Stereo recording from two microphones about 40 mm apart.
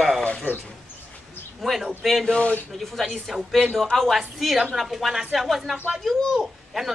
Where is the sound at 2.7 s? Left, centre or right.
Centre.